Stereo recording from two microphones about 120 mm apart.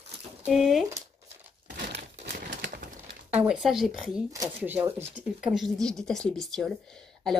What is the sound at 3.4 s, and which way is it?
Speech, 5° right (ahead or behind).